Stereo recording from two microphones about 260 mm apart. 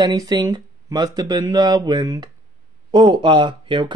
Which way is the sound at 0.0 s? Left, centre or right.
Centre.